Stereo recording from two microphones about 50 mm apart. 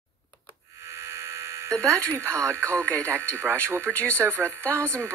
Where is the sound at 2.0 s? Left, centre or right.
Right.